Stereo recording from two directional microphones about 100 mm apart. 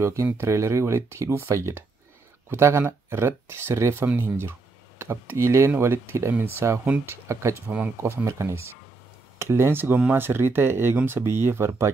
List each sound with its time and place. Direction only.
0.0 s speech: 30° right (ahead or behind)
7.6 s speech: 15° right (ahead or behind)
8.3 s speech: 30° right (ahead or behind)